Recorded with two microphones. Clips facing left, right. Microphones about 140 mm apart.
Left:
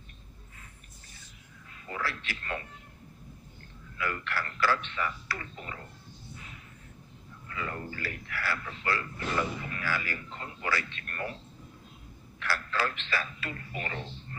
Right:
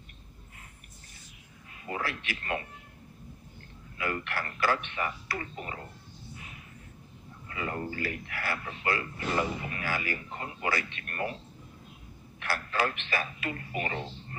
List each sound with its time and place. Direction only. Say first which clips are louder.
1.9 s a man's voice: right 2 dB; 20° right (ahead or behind)
4.0 s a man's voice: right 1 dB; 20° right (ahead or behind)
7.4 s a man's voice: right 3 dB; 25° right (ahead or behind)
12.4 s a man's voice: right 1 dB; 20° right (ahead or behind)